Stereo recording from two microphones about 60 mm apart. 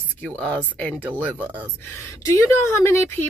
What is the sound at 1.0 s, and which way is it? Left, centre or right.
Speech, right.